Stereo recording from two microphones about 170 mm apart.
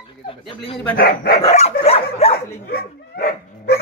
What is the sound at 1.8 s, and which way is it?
Dog, 35° left (ahead or behind).